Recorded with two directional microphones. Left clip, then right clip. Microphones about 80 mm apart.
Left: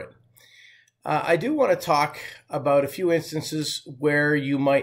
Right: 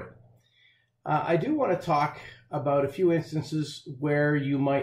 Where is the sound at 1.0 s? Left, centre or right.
Left.